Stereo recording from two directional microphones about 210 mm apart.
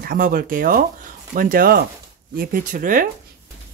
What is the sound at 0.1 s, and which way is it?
Speech, 45° right (ahead or behind).